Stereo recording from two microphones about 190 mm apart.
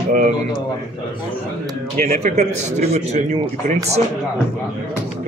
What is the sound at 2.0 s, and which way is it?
A man's voice, 45° right (ahead or behind).